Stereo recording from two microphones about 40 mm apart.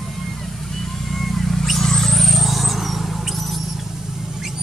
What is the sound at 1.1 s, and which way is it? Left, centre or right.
Vehicle, centre.